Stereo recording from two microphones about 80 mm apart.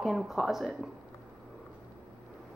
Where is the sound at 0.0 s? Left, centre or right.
Centre.